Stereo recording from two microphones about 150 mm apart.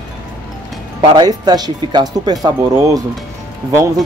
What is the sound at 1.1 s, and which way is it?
Speech, 25° right (ahead or behind).